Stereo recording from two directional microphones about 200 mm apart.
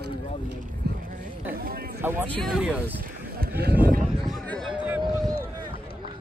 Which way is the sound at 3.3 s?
50° right (ahead or behind).